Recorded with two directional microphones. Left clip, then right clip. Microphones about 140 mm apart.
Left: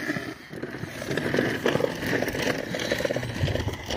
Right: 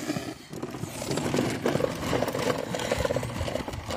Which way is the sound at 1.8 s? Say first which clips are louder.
Left 1 dB; centre (ahead or behind).